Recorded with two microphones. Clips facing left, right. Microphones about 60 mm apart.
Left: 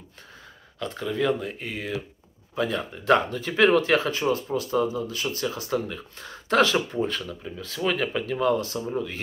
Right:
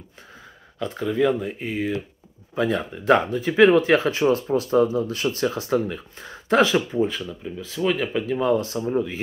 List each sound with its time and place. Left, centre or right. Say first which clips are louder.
0.7 s speech: right 5 dB; centre
2.5 s speech: right 4 dB; right
2.8 s speech: right 1 dB; centre
6.9 s speech: right 4 dB; centre
8.3 s speech: right 3 dB; centre